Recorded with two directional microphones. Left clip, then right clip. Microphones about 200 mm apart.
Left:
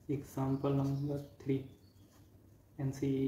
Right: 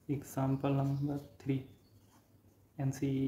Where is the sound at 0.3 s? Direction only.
50° right (ahead or behind).